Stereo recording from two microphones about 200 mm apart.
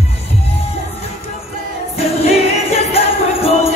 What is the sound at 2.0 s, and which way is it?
Music, 30° left (ahead or behind).